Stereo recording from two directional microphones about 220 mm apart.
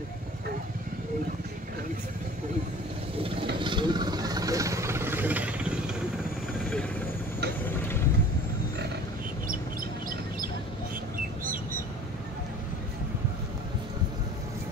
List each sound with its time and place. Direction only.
3.5 s vehicle: 20° right (ahead or behind)
6.6 s vehicle: 5° left (ahead or behind)